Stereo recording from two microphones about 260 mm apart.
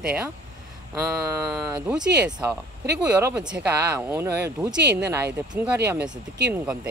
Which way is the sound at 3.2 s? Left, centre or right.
Centre.